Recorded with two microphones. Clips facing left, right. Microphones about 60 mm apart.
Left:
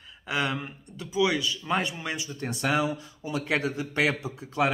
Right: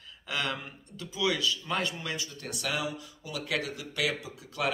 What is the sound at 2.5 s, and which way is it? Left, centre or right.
A man's voice, left.